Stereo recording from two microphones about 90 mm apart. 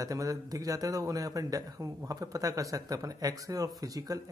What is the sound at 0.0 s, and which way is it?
Speech, 40° right (ahead or behind).